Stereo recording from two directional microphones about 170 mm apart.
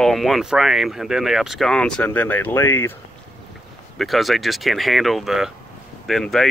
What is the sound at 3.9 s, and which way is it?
Speech, centre (ahead or behind).